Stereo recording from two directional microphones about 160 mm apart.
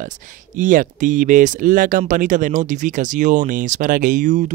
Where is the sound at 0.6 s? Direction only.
55° right (ahead or behind).